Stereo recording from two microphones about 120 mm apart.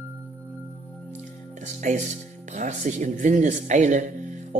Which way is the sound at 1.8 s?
90° right.